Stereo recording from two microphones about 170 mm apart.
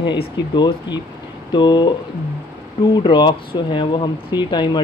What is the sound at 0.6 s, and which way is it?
Speech, 25° left (ahead or behind).